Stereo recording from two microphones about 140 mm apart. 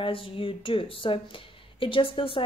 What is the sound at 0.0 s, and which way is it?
A woman's voice, 40° left (ahead or behind).